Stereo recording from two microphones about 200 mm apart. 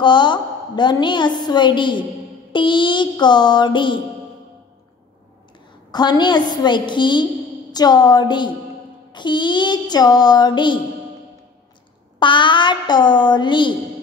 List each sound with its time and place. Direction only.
0.0 s a woman's voice: 20° left (ahead or behind)
5.9 s a woman's voice: 20° left (ahead or behind)
12.2 s a woman's voice: 25° left (ahead or behind)